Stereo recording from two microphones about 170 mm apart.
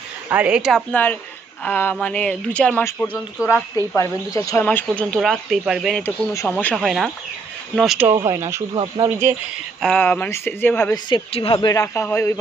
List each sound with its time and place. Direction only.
0.3 s speech: 5° right (ahead or behind)
1.6 s speech: 10° left (ahead or behind)
4.6 s speech: 5° left (ahead or behind)
6.0 s speech: 15° left (ahead or behind)
8.3 s speech: 15° right (ahead or behind)
9.8 s speech: 5° left (ahead or behind)
11.1 s speech: 30° left (ahead or behind)
11.7 s speech: 15° left (ahead or behind)